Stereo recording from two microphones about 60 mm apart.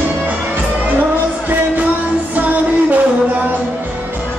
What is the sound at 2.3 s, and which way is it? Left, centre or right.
Music, right.